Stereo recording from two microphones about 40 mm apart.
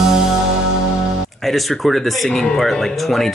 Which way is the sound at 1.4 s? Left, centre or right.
Centre.